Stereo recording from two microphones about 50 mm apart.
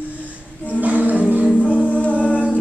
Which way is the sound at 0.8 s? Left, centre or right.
Right.